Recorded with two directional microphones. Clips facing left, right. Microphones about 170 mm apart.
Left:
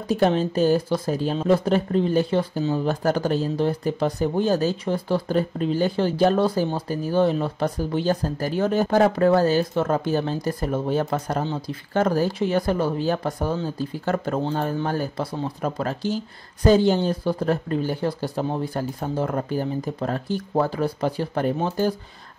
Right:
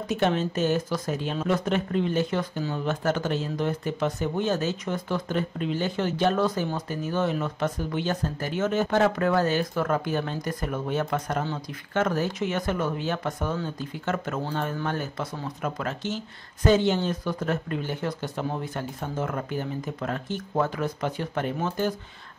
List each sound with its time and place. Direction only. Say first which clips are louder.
0.1 s speech: left 5 dB; 35° left (ahead or behind)